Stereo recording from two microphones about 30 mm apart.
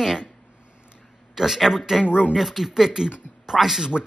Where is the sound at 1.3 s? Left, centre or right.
Centre.